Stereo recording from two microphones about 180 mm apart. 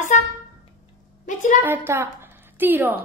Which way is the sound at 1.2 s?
45° left (ahead or behind).